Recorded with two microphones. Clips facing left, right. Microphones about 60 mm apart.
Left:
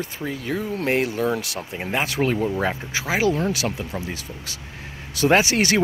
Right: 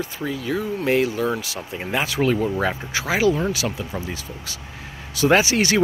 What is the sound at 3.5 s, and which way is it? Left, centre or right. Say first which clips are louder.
Speech: even; left.